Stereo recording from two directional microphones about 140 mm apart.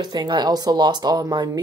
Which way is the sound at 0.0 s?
30° right (ahead or behind).